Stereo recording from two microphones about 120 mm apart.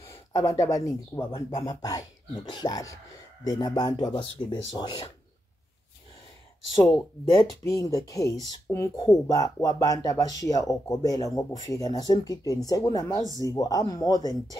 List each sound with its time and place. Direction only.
0.0 s speech: 25° left (ahead or behind)
7.6 s speech: 25° left (ahead or behind)